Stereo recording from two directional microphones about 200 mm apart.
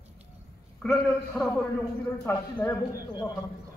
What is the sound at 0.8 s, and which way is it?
Speech, centre (ahead or behind).